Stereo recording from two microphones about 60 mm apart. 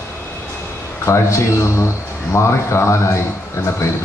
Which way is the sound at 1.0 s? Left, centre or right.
Left.